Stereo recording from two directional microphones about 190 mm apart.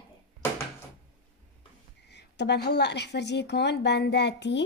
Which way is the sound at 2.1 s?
65° left (ahead or behind).